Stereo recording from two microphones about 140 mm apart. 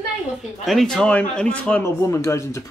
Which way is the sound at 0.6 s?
Centre (ahead or behind).